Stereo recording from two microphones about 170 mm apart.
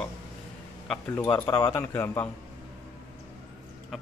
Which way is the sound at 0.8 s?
10° left (ahead or behind).